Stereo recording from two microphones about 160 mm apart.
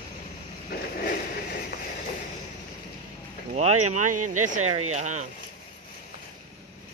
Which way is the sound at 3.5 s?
45° right (ahead or behind).